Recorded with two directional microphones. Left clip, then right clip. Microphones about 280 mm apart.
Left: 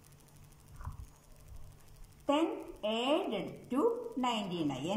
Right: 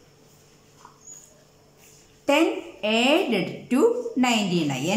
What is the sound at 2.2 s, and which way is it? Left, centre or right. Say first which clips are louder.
A woman's voice: right 11 dB; right.